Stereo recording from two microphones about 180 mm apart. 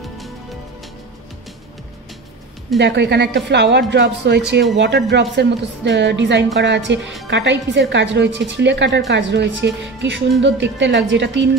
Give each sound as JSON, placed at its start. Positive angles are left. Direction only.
{"t": 2.8, "sound": "a woman's voice", "side_deg": -70}